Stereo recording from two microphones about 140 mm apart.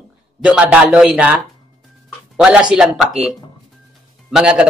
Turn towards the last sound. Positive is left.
turn(degrees=-5)  # may be behind; listen again after turning